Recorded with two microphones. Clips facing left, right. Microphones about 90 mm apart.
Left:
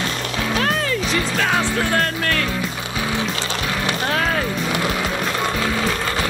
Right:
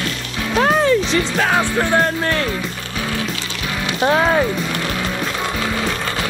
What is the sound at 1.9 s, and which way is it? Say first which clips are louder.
Speech: right 4 dB; 15° right (ahead or behind).